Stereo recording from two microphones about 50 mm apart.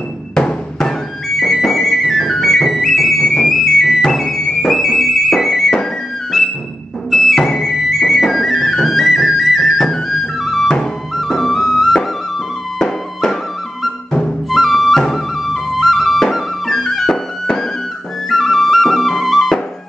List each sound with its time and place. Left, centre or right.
0.3 s music: centre
8.7 s flute: centre
11.1 s music: centre
14.5 s music: centre
18.3 s flute: centre